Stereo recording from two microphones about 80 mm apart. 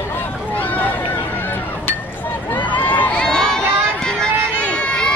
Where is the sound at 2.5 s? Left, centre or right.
Left.